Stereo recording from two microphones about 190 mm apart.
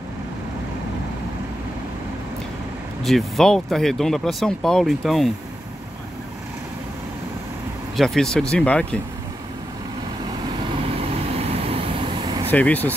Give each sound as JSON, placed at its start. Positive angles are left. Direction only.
{"t": 3.0, "sound": "speech", "side_deg": 0}
{"t": 7.9, "sound": "speech", "side_deg": 0}
{"t": 10.8, "sound": "vehicle", "side_deg": -30}
{"t": 12.4, "sound": "speech", "side_deg": 10}